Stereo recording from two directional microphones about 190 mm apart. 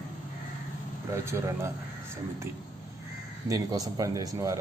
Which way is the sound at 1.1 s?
15° right (ahead or behind).